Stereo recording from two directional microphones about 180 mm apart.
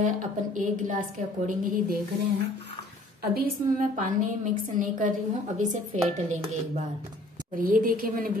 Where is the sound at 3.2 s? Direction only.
55° right (ahead or behind).